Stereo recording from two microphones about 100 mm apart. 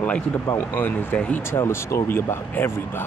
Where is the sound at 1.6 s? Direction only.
30° left (ahead or behind).